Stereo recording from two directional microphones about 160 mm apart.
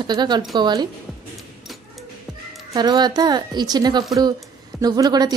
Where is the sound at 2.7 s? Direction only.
25° right (ahead or behind).